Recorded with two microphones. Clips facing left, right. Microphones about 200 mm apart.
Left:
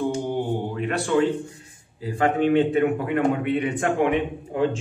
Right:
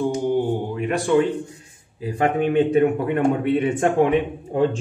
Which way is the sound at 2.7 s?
25° right (ahead or behind).